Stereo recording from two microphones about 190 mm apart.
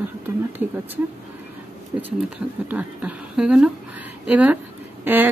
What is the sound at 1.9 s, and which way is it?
Speech, 15° right (ahead or behind).